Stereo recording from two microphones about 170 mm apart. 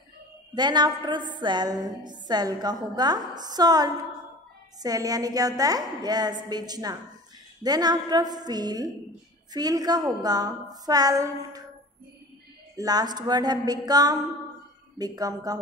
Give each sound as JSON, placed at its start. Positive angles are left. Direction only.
{"t": 0.6, "sound": "a woman's voice", "side_deg": -25}
{"t": 12.7, "sound": "a woman's voice", "side_deg": -20}